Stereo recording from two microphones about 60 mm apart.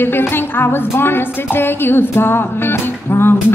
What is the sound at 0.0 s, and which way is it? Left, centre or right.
Music, left.